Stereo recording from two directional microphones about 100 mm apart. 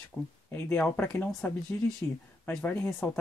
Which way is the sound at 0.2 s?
15° left (ahead or behind).